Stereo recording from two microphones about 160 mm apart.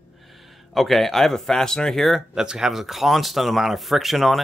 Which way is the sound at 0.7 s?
Centre (ahead or behind).